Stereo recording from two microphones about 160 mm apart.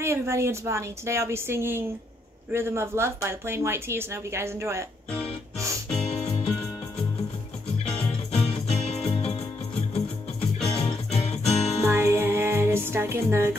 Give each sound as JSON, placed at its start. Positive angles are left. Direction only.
{"t": 0.0, "sound": "speech", "side_deg": -15}
{"t": 6.0, "sound": "music", "side_deg": 35}
{"t": 8.3, "sound": "music", "side_deg": 40}
{"t": 11.8, "sound": "music", "side_deg": -15}